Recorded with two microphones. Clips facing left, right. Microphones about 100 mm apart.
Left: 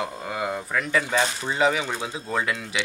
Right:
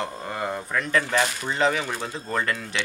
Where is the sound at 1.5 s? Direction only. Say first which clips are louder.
Left 1 dB; 10° left (ahead or behind).